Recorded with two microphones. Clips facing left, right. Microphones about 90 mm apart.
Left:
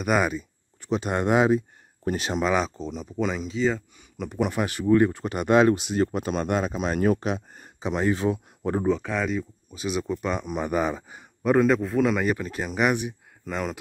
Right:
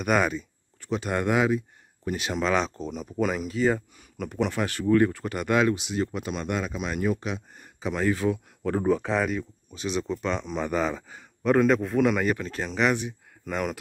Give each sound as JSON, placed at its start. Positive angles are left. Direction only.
{"t": 0.0, "sound": "speech", "side_deg": 5}
{"t": 0.7, "sound": "speech", "side_deg": 20}
{"t": 2.4, "sound": "speech", "side_deg": 5}
{"t": 4.5, "sound": "speech", "side_deg": 15}
{"t": 5.7, "sound": "speech", "side_deg": 45}
{"t": 7.8, "sound": "speech", "side_deg": 20}
{"t": 8.8, "sound": "speech", "side_deg": -10}
{"t": 9.3, "sound": "speech", "side_deg": 5}
{"t": 13.5, "sound": "speech", "side_deg": -5}